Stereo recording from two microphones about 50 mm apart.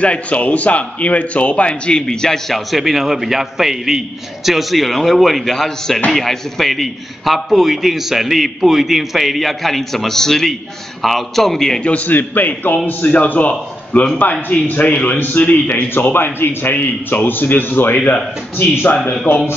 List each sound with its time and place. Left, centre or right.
0.0 s a man's voice: left; by 11.8 s centre
12.1 s a man's voice: left